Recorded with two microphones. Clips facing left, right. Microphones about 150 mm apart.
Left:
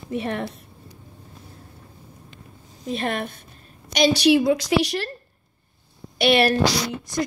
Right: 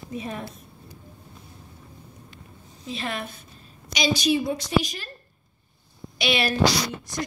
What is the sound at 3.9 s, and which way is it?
A woman's voice, 65° left (ahead or behind).